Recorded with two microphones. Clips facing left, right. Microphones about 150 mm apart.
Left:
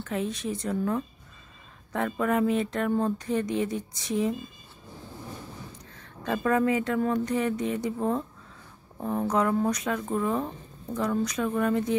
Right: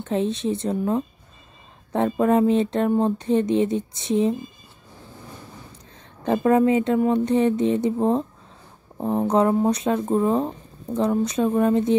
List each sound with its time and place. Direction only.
0.0 s speech: 25° right (ahead or behind)
6.2 s speech: 25° right (ahead or behind)